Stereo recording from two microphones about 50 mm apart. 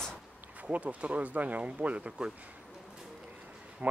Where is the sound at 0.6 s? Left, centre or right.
Right.